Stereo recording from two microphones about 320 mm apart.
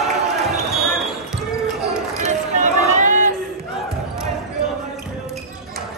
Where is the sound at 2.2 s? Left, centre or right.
Right.